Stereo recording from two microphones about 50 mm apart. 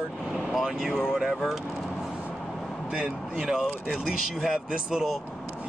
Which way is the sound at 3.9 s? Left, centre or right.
Centre.